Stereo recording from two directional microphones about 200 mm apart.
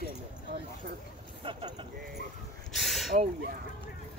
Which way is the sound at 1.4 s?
25° right (ahead or behind).